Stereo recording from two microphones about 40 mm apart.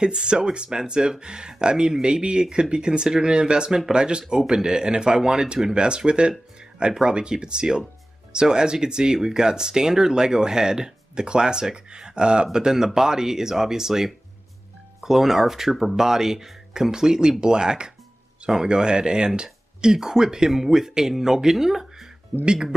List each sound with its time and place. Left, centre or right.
0.0 s speech: right
22.4 s speech: centre